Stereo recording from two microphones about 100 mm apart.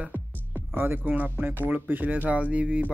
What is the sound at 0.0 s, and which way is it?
Music, 10° right (ahead or behind).